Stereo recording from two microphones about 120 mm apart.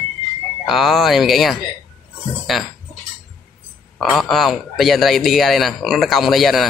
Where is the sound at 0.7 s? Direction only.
Centre (ahead or behind).